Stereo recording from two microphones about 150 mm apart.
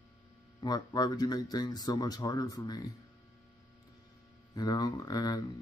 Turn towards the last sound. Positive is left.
turn(degrees=25)  # may be behind; listen again after turning